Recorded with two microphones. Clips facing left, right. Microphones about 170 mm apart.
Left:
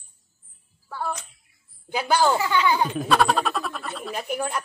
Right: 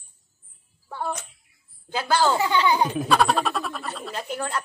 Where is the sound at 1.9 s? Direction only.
15° left (ahead or behind).